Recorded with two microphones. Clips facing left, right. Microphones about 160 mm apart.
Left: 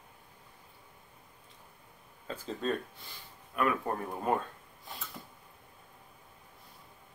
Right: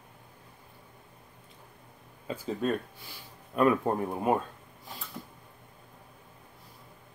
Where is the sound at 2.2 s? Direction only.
10° right (ahead or behind).